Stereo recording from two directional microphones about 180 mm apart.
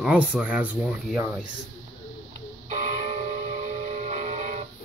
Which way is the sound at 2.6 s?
40° right (ahead or behind).